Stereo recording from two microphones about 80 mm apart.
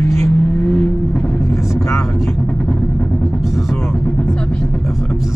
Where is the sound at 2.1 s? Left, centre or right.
Centre.